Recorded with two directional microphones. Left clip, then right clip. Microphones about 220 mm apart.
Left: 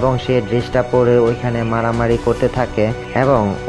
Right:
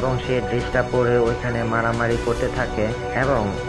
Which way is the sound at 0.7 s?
40° left (ahead or behind).